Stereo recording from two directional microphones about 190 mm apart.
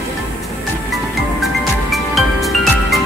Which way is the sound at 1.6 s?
Centre (ahead or behind).